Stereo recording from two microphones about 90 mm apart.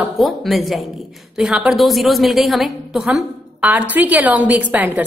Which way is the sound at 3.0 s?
15° right (ahead or behind).